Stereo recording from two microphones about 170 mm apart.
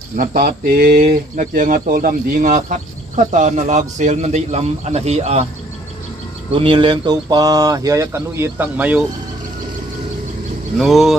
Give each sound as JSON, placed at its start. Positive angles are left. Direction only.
{"t": 0.1, "sound": "speech", "side_deg": -55}
{"t": 6.5, "sound": "speech", "side_deg": -30}
{"t": 10.8, "sound": "speech", "side_deg": 0}